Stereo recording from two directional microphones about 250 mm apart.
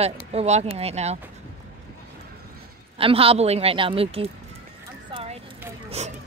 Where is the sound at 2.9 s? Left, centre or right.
Right.